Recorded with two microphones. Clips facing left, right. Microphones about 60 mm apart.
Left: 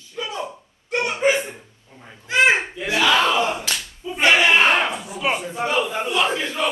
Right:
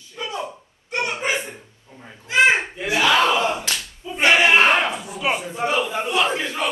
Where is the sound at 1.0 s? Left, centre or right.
Centre.